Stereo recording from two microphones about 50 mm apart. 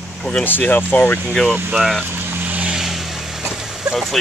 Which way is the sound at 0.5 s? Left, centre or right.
Left.